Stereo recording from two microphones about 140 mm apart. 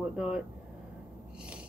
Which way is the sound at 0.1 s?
5° right (ahead or behind).